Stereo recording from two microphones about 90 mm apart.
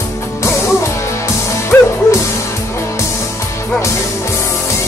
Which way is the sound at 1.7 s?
20° left (ahead or behind).